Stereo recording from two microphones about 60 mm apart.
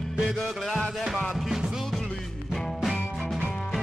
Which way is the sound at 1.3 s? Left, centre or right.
Centre.